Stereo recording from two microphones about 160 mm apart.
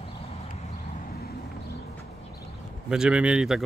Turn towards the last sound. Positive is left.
turn(degrees=-5)  # may be behind; listen again after turning